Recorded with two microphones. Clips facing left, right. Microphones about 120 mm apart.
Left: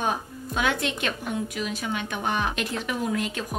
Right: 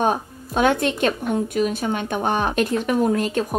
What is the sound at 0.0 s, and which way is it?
Speech, 45° right (ahead or behind).